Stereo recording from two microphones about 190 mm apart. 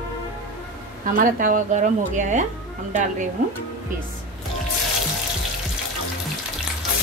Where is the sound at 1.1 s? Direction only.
45° right (ahead or behind).